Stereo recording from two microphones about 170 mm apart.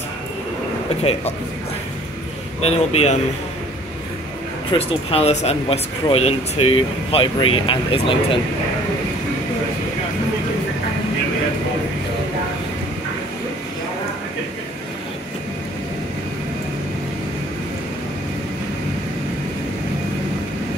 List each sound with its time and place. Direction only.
2.6 s speech: 40° left (ahead or behind)
4.7 s speech: 35° left (ahead or behind)